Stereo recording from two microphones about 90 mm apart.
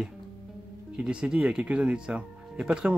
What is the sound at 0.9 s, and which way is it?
Speech, 10° right (ahead or behind).